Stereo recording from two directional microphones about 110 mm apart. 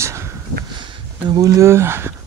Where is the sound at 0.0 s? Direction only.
25° right (ahead or behind).